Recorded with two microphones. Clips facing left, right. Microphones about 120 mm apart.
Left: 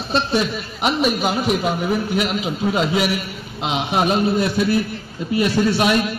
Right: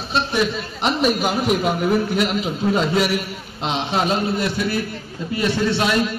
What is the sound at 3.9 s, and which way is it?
Speech, 20° left (ahead or behind).